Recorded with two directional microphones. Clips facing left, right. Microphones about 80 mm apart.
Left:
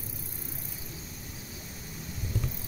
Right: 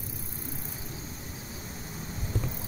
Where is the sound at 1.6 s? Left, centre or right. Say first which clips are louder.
Right 3 dB; right.